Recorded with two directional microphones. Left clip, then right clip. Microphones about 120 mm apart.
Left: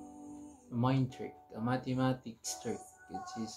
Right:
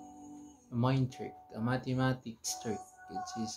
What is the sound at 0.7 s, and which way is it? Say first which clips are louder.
Speech: even; 35° right (ahead or behind).